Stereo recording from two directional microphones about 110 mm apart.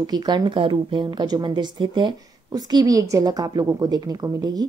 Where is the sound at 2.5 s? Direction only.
35° right (ahead or behind).